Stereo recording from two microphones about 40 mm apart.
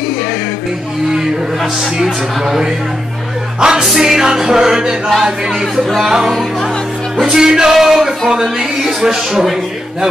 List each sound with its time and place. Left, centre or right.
2.0 s music: centre
3.8 s music: centre
7.2 s music: centre